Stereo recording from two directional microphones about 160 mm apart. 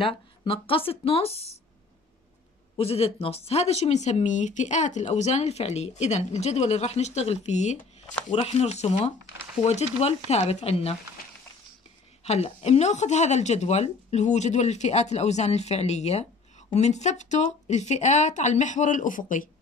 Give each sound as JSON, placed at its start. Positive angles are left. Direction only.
{"t": 0.0, "sound": "speech", "side_deg": 35}
{"t": 2.8, "sound": "speech", "side_deg": 35}
{"t": 12.3, "sound": "speech", "side_deg": 40}